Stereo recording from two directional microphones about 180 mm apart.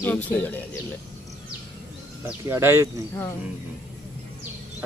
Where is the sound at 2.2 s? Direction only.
15° right (ahead or behind).